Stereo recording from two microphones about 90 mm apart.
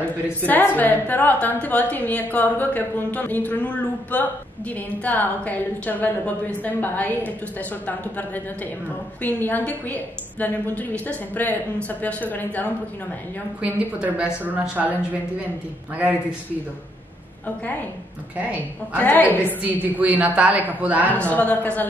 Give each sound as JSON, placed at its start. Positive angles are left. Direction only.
{"t": 0.5, "sound": "a woman's voice", "side_deg": 20}
{"t": 9.2, "sound": "a woman's voice", "side_deg": 20}
{"t": 13.6, "sound": "a woman's voice", "side_deg": -15}
{"t": 18.9, "sound": "a woman's voice", "side_deg": 20}
{"t": 19.8, "sound": "a woman's voice", "side_deg": -15}
{"t": 21.1, "sound": "a man's voice", "side_deg": 15}